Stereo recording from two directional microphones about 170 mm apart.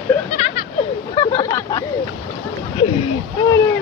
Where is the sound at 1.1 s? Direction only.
25° left (ahead or behind).